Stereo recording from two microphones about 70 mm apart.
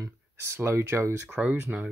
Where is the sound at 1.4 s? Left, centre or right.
Centre.